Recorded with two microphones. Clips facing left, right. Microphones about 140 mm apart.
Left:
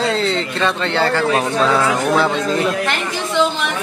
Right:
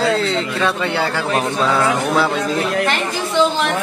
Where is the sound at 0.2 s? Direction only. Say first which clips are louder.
Even; centre (ahead or behind).